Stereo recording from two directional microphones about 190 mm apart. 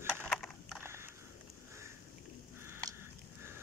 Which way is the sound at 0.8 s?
15° right (ahead or behind).